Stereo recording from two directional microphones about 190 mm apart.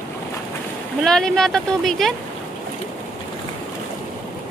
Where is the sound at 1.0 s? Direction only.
5° left (ahead or behind).